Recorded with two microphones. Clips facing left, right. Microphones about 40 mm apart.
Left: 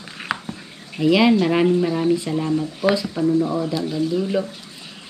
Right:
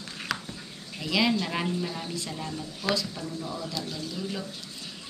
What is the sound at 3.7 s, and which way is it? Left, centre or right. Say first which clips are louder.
Speech: left 13 dB; centre.